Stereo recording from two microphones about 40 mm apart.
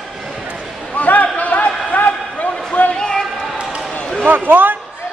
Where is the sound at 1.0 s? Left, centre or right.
Left.